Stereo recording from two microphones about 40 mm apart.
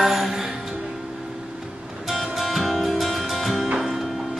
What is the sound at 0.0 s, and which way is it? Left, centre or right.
Music, centre.